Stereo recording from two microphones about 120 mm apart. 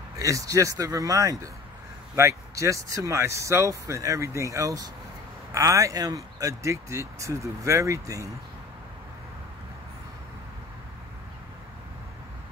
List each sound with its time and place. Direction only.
0.2 s speech: 25° right (ahead or behind)